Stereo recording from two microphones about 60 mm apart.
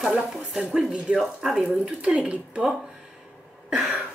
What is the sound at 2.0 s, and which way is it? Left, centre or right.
Speech, centre.